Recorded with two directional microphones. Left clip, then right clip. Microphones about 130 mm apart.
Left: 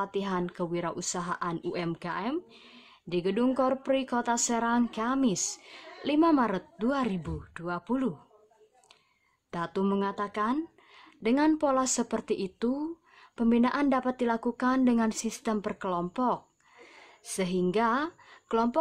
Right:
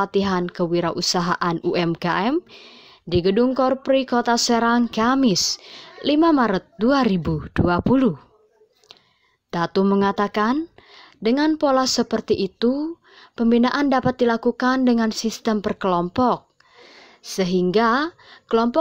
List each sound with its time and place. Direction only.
0.0 s speech: 35° right (ahead or behind); by 2.3 s 50° right (ahead or behind)
2.5 s speech: 40° right (ahead or behind)
9.5 s speech: 35° right (ahead or behind)